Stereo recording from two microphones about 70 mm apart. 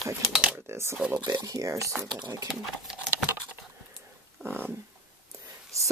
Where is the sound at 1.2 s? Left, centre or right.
Right.